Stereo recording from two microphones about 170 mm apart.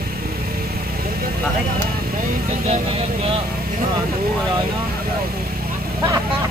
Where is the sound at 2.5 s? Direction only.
40° right (ahead or behind).